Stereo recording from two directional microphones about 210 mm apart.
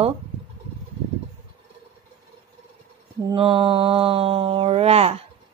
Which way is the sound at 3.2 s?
25° right (ahead or behind).